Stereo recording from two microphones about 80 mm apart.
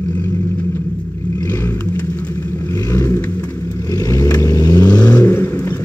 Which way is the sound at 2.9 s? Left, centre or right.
Left.